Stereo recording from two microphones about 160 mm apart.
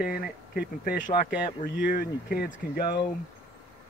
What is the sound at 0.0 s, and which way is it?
Speech, 70° left (ahead or behind).